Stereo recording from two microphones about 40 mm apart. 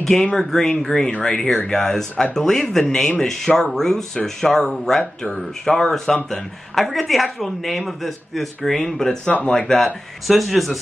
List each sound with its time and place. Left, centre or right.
0.0 s speech: centre
10.2 s speech: centre